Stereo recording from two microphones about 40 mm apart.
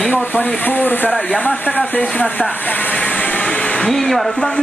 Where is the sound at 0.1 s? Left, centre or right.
Left.